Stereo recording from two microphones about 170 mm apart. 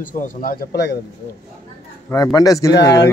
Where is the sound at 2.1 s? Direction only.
20° left (ahead or behind).